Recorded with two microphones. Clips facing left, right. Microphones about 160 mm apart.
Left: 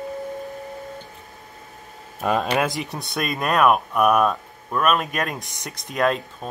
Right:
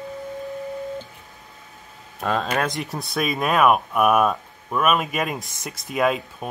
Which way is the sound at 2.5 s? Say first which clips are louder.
Left 1 dB; centre (ahead or behind).